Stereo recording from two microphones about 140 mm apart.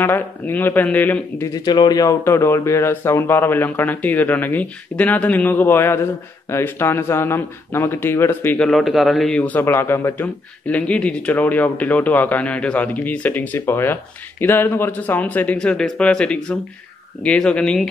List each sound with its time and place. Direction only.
0.0 s a man's voice: 15° left (ahead or behind)
1.5 s a man's voice: 30° left (ahead or behind); by 8.6 s 15° left (ahead or behind)
8.6 s a man's voice: centre (ahead or behind)